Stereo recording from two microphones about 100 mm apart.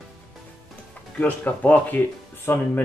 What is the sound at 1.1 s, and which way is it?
Speech, 15° left (ahead or behind).